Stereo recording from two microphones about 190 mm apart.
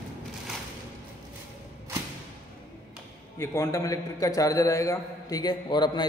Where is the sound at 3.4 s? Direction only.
15° left (ahead or behind).